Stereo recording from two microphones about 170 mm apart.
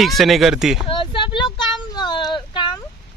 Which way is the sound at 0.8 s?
30° left (ahead or behind).